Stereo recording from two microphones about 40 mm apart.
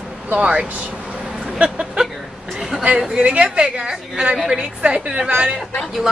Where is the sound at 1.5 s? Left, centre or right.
Right.